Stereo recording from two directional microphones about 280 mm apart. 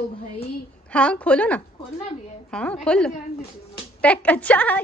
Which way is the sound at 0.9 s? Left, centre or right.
Centre.